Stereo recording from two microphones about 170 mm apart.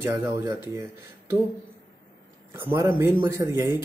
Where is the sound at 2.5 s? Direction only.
15° right (ahead or behind).